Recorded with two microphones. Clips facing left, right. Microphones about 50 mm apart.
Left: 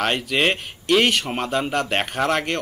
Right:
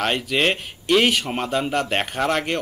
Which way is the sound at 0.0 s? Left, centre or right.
Centre.